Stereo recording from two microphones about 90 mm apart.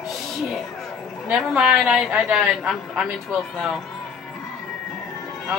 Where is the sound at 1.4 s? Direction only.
5° right (ahead or behind).